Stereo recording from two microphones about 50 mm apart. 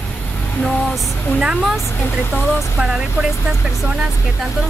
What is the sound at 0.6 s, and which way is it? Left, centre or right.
Vehicle, centre.